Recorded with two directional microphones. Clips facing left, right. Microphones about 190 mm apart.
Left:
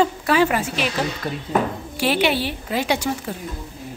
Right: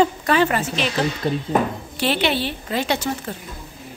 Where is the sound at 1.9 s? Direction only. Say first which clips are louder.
Left 1 dB; 10° left (ahead or behind).